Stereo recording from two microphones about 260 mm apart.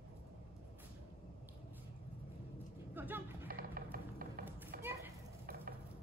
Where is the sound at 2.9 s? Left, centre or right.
Centre.